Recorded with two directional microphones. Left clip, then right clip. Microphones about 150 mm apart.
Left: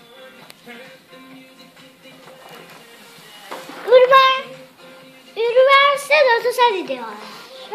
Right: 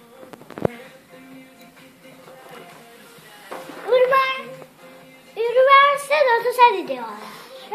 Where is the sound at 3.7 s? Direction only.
50° left (ahead or behind); by 7.7 s 5° left (ahead or behind).